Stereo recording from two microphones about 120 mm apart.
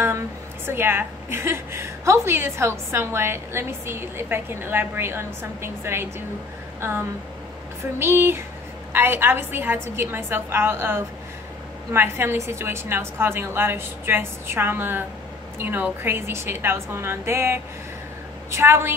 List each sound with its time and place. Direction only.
0.7 s a woman's voice: 20° right (ahead or behind)